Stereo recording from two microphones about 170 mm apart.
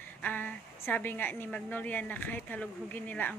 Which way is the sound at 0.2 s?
10° left (ahead or behind).